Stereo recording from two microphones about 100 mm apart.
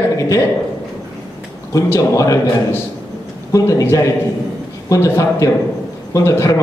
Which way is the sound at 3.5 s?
35° left (ahead or behind).